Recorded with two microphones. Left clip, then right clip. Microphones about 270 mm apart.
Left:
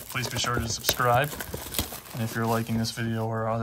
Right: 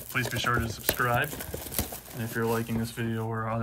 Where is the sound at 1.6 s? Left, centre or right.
Centre.